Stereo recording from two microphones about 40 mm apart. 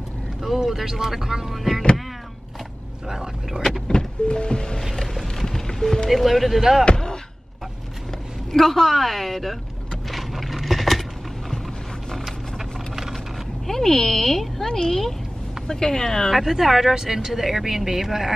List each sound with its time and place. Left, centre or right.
0.4 s speech: centre
3.1 s speech: centre
3.8 s music: left
4.9 s music: centre
6.0 s a woman's voice: centre
8.5 s a woman's voice: centre
10.1 s a sound: centre
12.3 s vehicle: centre
13.7 s speech: centre
16.3 s a woman's voice: centre